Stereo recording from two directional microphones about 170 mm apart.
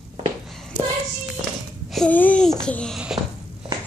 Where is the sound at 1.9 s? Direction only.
5° left (ahead or behind).